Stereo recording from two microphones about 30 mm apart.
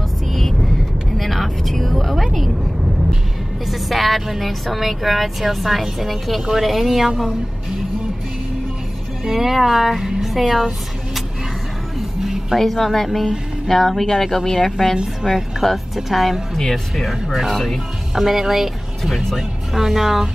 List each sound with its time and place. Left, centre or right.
0.3 s vehicle: centre
3.7 s music: centre
4.7 s speech: centre
9.2 s speech: centre
12.2 s music: centre
12.9 s speech: centre
15.6 s speech: centre
18.1 s speech: centre